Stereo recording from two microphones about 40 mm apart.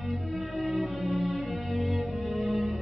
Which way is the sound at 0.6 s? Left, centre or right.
Centre.